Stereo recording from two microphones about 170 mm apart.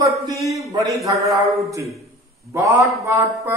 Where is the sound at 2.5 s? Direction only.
15° right (ahead or behind).